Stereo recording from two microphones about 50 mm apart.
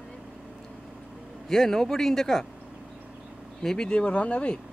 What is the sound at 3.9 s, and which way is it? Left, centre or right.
Speech, left.